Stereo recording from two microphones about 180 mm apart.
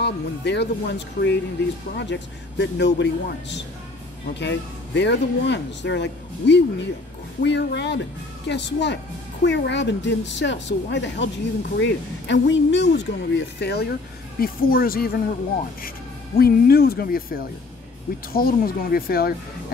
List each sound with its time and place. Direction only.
0.0 s speech: 70° left (ahead or behind)
14.4 s speech: 55° left (ahead or behind)
16.3 s speech: 60° left (ahead or behind)